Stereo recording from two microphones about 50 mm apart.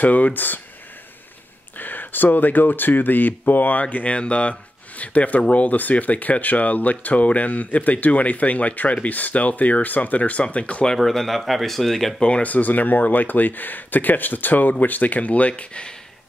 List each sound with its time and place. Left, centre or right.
0.0 s speech: left
1.8 s speech: left
3.8 s speech: left
11.0 s speech: centre
12.2 s speech: left